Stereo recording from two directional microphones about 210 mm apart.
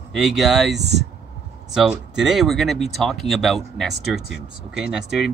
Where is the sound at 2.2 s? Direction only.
Centre (ahead or behind).